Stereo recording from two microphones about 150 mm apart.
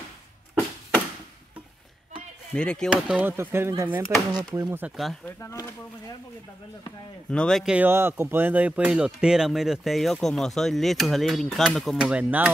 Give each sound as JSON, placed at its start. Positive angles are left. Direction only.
{"t": 2.5, "sound": "speech", "side_deg": 5}
{"t": 2.9, "sound": "speech", "side_deg": -10}
{"t": 4.8, "sound": "speech", "side_deg": 0}
{"t": 5.2, "sound": "speech", "side_deg": 20}
{"t": 7.2, "sound": "speech", "side_deg": 5}
{"t": 7.7, "sound": "speech", "side_deg": -15}